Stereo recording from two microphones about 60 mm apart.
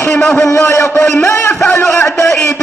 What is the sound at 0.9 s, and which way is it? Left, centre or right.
A man's voice, left.